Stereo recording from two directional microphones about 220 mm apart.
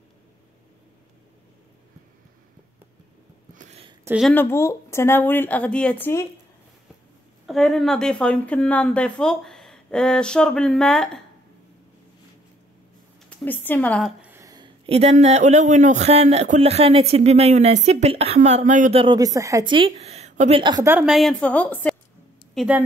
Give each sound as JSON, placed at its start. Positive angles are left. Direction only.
{"t": 3.5, "sound": "a sound", "side_deg": -25}
{"t": 4.0, "sound": "a woman's voice", "side_deg": -5}
{"t": 4.3, "sound": "speech", "side_deg": 10}
{"t": 7.4, "sound": "a woman's voice", "side_deg": 0}
{"t": 13.4, "sound": "speech", "side_deg": 10}
{"t": 14.2, "sound": "a woman's voice", "side_deg": -10}
{"t": 22.5, "sound": "speech", "side_deg": -5}